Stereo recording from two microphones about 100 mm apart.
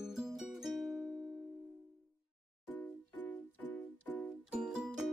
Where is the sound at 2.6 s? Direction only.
15° left (ahead or behind).